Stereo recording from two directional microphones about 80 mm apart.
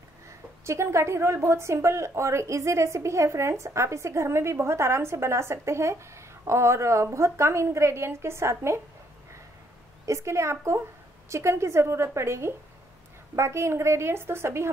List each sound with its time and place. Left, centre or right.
0.7 s a woman's voice: right
10.0 s a woman's voice: right